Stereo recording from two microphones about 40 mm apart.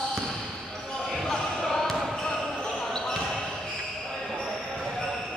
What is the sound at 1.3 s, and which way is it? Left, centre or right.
Basketball bounce, centre.